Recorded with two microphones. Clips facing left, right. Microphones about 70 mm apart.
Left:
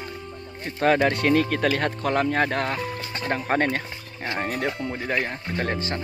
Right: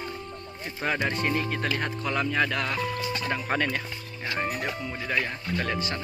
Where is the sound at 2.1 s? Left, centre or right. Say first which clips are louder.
Left 3 dB; left.